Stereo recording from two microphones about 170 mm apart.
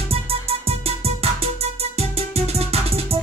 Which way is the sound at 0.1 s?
35° right (ahead or behind).